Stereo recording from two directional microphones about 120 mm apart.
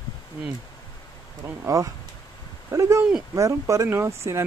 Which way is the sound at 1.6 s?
25° right (ahead or behind).